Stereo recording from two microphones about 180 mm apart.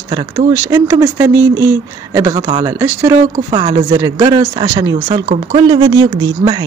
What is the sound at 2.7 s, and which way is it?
Speech, 15° right (ahead or behind).